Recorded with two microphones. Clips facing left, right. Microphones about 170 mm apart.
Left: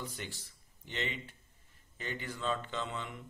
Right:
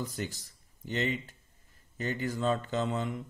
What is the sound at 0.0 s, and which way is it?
A man's voice, 40° right (ahead or behind).